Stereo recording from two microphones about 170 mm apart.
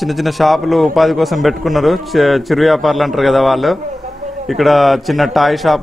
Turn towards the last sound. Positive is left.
turn(degrees=0)  # may be behind; listen again after turning